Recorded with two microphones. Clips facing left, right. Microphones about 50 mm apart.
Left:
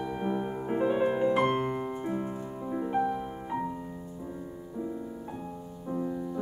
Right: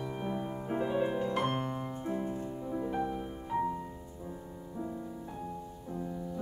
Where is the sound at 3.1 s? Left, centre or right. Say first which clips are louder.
Left 1 dB; centre.